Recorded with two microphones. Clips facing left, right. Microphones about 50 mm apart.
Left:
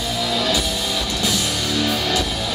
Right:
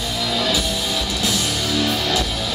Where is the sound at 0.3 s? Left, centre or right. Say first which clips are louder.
Right 1 dB; centre.